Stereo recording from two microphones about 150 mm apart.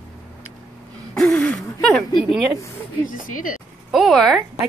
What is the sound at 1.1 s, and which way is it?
Speech, 5° left (ahead or behind).